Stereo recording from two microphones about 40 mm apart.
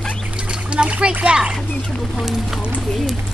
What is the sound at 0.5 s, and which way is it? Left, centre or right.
Splash, right.